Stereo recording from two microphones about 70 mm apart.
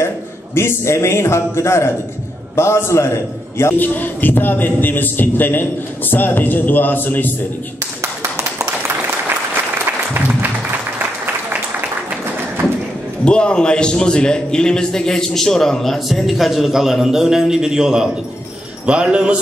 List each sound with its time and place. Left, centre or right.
0.6 s a man's voice: left
3.7 s a man's voice: left
8.0 s clapping: right
13.2 s a man's voice: centre